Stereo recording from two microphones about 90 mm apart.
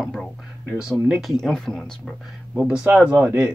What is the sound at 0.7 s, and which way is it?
Speech, 10° right (ahead or behind).